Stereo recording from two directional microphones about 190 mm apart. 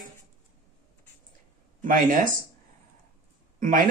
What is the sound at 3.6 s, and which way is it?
Speech, 45° right (ahead or behind).